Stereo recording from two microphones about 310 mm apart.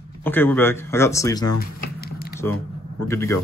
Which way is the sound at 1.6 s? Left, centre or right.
Left.